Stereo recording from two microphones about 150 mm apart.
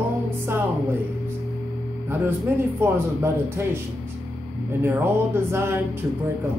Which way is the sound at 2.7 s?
15° right (ahead or behind).